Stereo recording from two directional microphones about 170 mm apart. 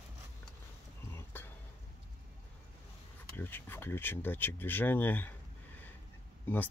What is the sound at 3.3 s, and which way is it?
Speech, 10° left (ahead or behind).